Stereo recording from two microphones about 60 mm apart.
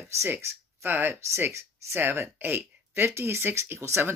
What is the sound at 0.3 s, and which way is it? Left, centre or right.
Speech, right.